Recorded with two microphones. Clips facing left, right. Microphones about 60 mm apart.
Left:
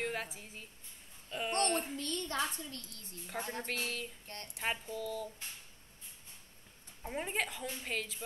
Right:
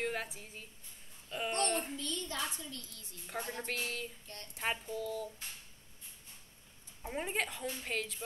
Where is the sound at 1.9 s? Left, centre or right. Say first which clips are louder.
Left 3 dB; left.